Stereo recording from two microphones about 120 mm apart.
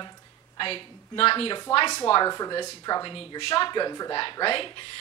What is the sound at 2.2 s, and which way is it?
Speech, 35° left (ahead or behind).